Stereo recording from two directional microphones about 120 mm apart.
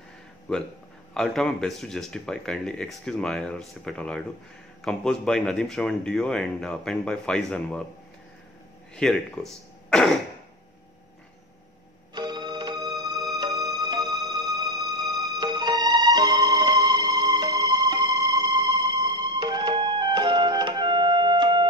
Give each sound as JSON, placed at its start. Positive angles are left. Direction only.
{"t": 1.1, "sound": "speech", "side_deg": 5}
{"t": 8.9, "sound": "speech", "side_deg": 5}
{"t": 12.1, "sound": "music", "side_deg": -35}